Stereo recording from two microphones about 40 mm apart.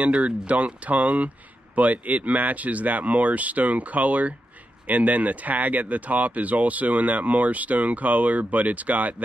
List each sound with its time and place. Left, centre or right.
0.0 s speech: right